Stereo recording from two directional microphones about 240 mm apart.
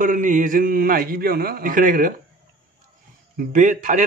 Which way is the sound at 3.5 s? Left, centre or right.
Right.